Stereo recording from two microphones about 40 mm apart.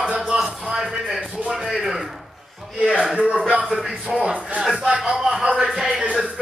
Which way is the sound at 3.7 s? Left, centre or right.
Centre.